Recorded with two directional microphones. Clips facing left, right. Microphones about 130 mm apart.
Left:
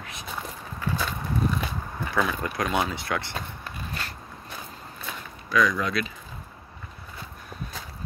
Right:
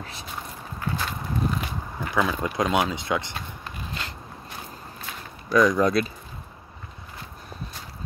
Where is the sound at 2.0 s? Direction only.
15° right (ahead or behind).